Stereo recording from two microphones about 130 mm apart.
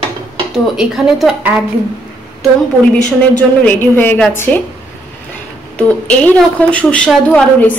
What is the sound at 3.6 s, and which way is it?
Speech, 15° left (ahead or behind).